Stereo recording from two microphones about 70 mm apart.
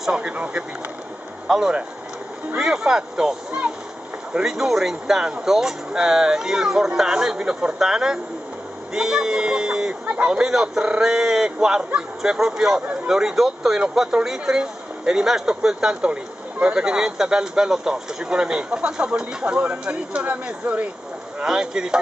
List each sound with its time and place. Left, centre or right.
0.0 s speech: centre